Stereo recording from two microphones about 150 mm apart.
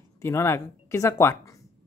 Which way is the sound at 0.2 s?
20° left (ahead or behind).